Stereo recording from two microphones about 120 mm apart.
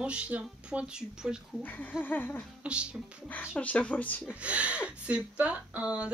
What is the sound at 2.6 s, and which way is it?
Speech, 10° right (ahead or behind).